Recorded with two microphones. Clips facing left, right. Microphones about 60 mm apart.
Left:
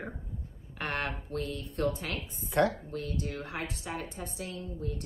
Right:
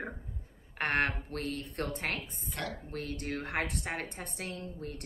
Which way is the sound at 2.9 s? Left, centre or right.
Right.